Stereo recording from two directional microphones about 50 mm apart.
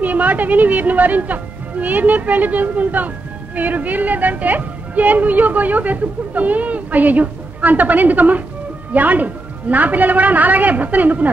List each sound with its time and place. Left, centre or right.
0.0 s a woman's voice: right